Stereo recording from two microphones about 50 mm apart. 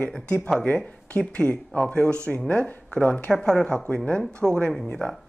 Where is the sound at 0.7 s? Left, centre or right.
Left.